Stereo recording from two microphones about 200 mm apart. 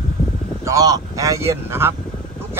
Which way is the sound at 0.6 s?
20° right (ahead or behind).